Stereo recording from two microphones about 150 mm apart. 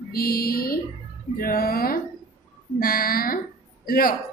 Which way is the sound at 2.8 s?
75° left (ahead or behind).